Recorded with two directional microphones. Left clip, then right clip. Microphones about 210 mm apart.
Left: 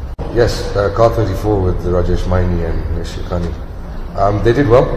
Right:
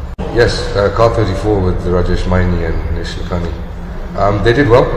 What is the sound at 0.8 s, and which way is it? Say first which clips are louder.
A man's voice: right 1 dB; 25° left (ahead or behind).